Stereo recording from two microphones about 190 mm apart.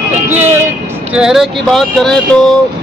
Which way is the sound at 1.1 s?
5° right (ahead or behind).